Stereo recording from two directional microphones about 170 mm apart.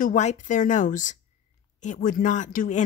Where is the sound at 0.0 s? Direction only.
45° left (ahead or behind).